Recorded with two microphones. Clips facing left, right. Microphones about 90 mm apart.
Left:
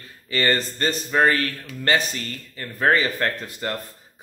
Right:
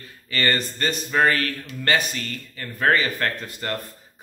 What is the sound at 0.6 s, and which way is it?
Speech, 30° left (ahead or behind).